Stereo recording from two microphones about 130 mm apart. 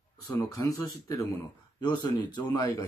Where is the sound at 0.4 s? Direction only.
25° left (ahead or behind).